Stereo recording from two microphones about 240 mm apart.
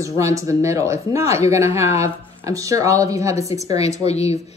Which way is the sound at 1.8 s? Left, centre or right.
Left.